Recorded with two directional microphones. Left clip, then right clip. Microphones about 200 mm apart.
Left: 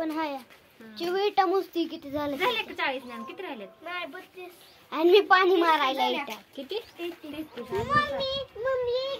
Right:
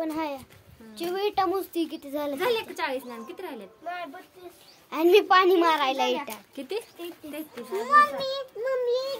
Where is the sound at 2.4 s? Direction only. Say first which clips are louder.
Even; 55° right (ahead or behind).